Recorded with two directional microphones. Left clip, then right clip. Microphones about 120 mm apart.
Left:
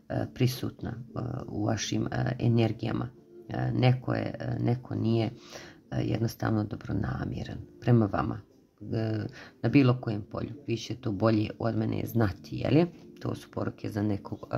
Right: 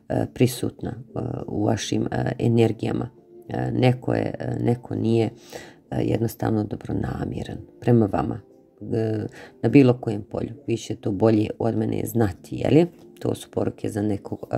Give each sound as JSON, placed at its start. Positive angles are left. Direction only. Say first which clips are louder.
{"t": 0.1, "sound": "speech", "louder": "right 9 dB", "side_deg": -45}